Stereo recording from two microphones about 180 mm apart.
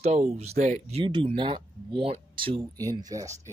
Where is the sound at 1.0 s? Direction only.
25° right (ahead or behind).